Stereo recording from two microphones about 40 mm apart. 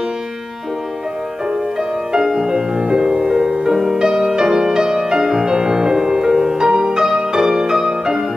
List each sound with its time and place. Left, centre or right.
2.1 s music: centre